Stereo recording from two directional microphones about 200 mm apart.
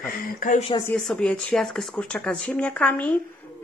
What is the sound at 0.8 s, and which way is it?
Speech, 5° left (ahead or behind).